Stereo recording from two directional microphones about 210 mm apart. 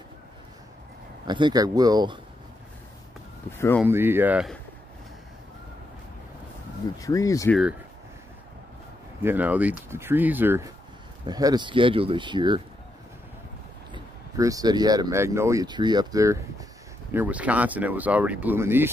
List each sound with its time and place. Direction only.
1.2 s speech: 20° right (ahead or behind)
3.5 s speech: 10° left (ahead or behind)
3.8 s speech: 10° right (ahead or behind)
7.0 s speech: 15° left (ahead or behind)
9.2 s speech: 10° right (ahead or behind)
13.9 s speech: 15° right (ahead or behind)